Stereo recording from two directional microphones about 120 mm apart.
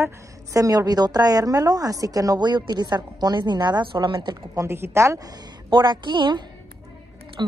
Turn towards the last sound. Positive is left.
turn(degrees=-40)  # may be behind; listen again after turning